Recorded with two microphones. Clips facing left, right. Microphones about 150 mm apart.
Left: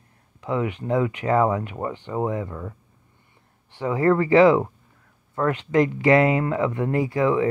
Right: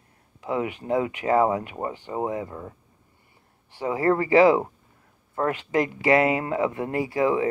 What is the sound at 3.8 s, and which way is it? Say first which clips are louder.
Speech: left 2 dB; 25° right (ahead or behind).